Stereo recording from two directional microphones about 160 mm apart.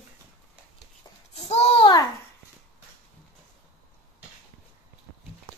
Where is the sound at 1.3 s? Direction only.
40° left (ahead or behind).